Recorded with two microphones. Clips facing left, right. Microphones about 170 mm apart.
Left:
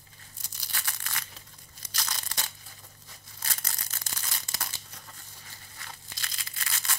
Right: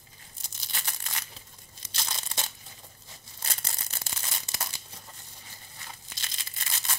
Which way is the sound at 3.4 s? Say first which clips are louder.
Right 1 dB; 25° right (ahead or behind).